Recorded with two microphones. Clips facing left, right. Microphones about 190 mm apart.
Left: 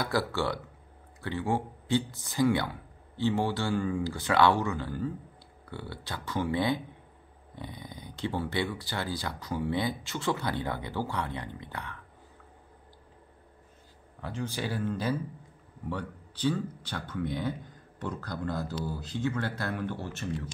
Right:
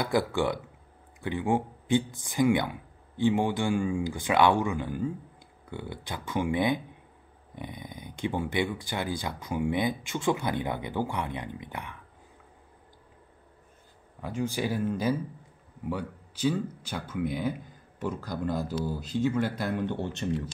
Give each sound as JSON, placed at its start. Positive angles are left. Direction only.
{"t": 0.0, "sound": "speech", "side_deg": -20}
{"t": 14.2, "sound": "speech", "side_deg": -10}